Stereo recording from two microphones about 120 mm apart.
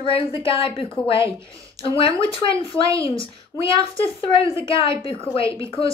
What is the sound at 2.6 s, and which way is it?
Speech, 25° right (ahead or behind).